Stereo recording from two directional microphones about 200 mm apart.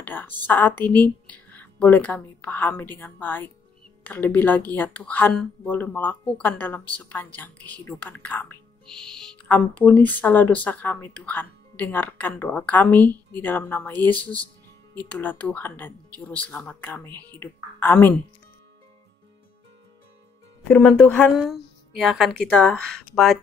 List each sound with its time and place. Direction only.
0.0 s speech: 10° left (ahead or behind)
17.1 s speech: 20° right (ahead or behind)
17.4 s speech: 10° left (ahead or behind)
20.6 s speech: 5° left (ahead or behind)